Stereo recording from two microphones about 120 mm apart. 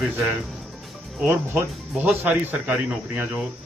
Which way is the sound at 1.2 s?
20° right (ahead or behind).